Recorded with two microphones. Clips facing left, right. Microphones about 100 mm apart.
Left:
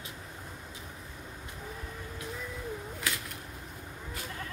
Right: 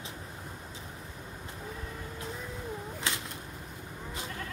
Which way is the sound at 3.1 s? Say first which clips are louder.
Even; 25° right (ahead or behind).